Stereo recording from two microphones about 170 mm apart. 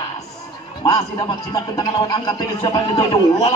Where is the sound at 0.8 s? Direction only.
25° left (ahead or behind).